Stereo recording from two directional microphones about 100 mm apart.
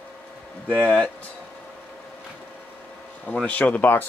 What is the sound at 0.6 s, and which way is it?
Speech, 15° left (ahead or behind).